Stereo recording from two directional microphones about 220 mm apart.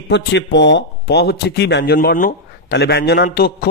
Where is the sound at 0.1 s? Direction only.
50° left (ahead or behind).